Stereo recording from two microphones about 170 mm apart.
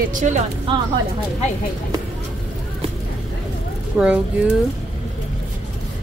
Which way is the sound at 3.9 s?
10° right (ahead or behind).